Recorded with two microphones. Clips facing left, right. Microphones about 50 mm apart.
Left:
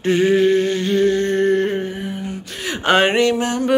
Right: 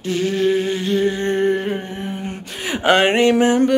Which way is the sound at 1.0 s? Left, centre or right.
Centre.